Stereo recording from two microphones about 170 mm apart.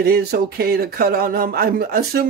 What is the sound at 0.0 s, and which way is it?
Speech, 65° right (ahead or behind).